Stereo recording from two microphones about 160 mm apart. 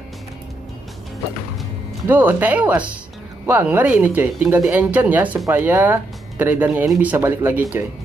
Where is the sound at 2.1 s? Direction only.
10° right (ahead or behind).